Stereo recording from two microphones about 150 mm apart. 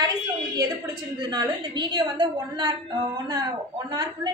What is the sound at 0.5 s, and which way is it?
A woman's voice, 25° right (ahead or behind).